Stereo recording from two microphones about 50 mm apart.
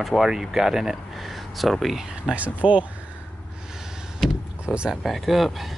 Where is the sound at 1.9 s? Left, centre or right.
Centre.